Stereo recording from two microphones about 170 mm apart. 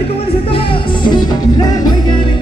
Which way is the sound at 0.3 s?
35° left (ahead or behind).